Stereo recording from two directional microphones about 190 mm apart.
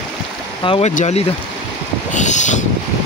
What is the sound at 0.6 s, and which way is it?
Speech, 35° left (ahead or behind).